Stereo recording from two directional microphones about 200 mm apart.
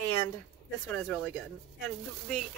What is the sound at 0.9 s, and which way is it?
Speech, 5° left (ahead or behind).